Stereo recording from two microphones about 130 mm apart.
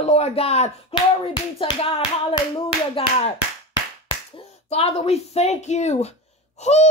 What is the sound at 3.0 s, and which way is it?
Speech, 45° left (ahead or behind).